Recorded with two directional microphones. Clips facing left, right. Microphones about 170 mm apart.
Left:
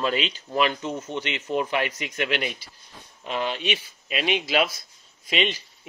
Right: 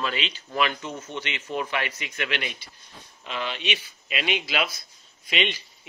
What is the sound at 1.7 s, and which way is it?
Speech, 40° left (ahead or behind).